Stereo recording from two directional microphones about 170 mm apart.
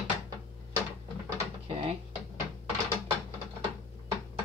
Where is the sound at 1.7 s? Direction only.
35° right (ahead or behind).